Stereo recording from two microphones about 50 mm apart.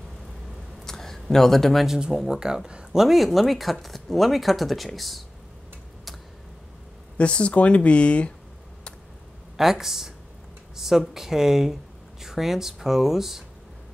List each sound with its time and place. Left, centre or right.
0.8 s a sound: centre
1.9 s speech: centre
7.2 s speech: left
9.6 s speech: centre